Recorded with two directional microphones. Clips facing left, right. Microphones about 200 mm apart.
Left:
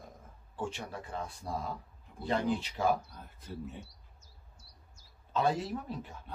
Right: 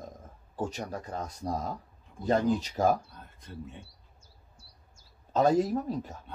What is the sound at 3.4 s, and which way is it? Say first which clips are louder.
Speech: left 1 dB; centre (ahead or behind).